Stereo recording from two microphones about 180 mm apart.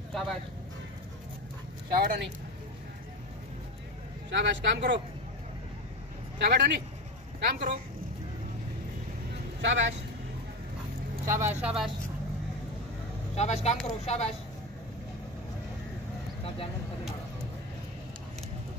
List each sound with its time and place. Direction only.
1.9 s speech: 55° right (ahead or behind)
4.3 s speech: 80° right
6.3 s a man's voice: 75° right (ahead or behind)
7.4 s speech: 55° right (ahead or behind)
9.6 s speech: 90° right
11.2 s speech: 15° right (ahead or behind)
11.6 s speech: centre (ahead or behind)
13.4 s speech: 35° left (ahead or behind)